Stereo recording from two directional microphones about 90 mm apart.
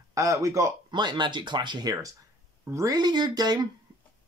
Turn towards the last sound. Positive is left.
turn(degrees=-50)  # may be behind; listen again after turning